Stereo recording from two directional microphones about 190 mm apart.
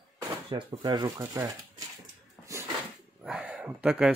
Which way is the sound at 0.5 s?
25° right (ahead or behind).